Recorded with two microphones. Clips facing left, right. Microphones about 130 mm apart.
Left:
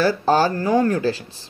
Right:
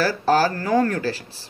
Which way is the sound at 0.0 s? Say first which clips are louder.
Left 2 dB; 20° left (ahead or behind).